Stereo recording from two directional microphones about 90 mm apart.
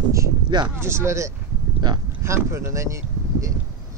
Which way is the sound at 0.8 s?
30° right (ahead or behind).